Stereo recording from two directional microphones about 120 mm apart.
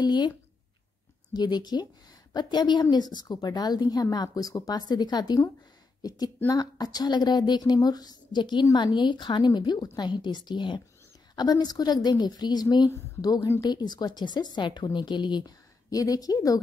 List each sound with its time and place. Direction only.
0.0 s a woman's voice: 35° left (ahead or behind)
1.3 s a woman's voice: 35° left (ahead or behind)